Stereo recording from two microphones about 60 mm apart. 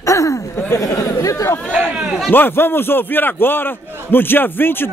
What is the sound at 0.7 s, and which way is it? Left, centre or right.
Chatter, left.